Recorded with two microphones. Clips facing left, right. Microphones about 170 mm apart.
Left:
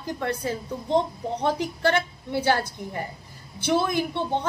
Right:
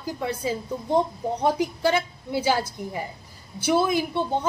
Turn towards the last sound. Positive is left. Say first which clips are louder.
# right 2 dB
turn(degrees=-10)  # may be behind; listen again after turning